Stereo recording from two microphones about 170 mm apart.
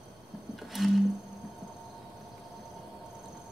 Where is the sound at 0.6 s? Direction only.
Centre (ahead or behind).